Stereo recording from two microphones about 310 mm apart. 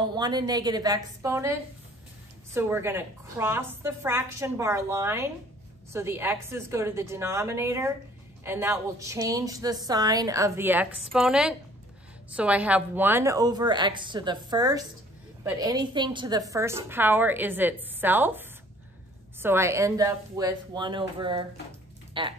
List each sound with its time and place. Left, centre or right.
0.1 s a woman's voice: centre
2.5 s a woman's voice: centre